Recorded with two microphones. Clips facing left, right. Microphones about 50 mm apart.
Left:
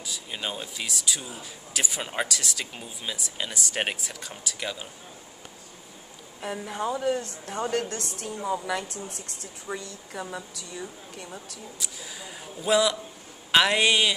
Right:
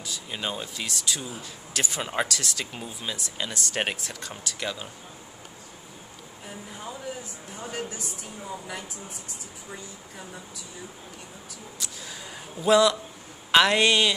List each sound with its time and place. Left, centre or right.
0.0 s speech: centre
6.4 s a woman's voice: left
11.8 s speech: centre